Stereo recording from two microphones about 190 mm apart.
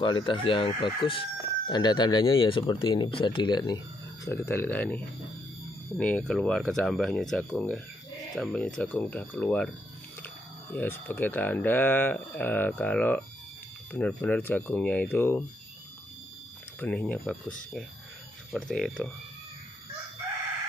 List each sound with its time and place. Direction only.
0.0 s speech: 25° left (ahead or behind); by 9.7 s 5° left (ahead or behind)
10.7 s speech: 10° left (ahead or behind)
16.8 s speech: 10° left (ahead or behind)